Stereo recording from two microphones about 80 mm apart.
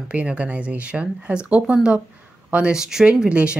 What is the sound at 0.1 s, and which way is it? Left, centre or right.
Speech, centre.